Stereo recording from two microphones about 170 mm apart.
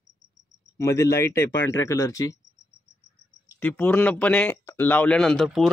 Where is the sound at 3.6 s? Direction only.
10° left (ahead or behind).